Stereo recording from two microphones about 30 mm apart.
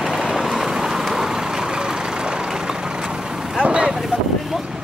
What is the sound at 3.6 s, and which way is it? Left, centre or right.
Vehicle, right.